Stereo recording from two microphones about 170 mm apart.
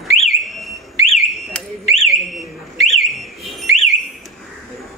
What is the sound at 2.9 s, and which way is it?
Whistle, centre (ahead or behind).